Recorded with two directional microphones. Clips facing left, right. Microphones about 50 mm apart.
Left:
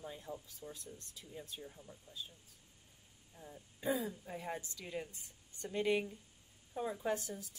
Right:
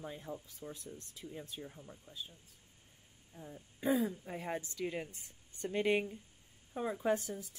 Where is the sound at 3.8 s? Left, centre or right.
Right.